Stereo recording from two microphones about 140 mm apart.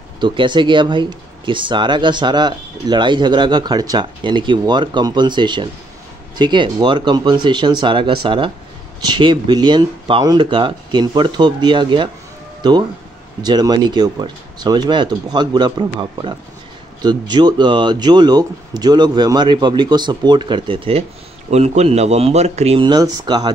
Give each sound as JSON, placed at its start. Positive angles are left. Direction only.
{"t": 0.2, "sound": "speech", "side_deg": -35}
{"t": 21.5, "sound": "speech", "side_deg": -50}
{"t": 22.8, "sound": "speech", "side_deg": -30}